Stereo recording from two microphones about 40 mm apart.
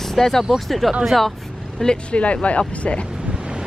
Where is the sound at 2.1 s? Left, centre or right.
Left.